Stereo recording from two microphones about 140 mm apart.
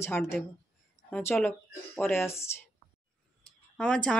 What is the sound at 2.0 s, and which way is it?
Speech, 15° left (ahead or behind).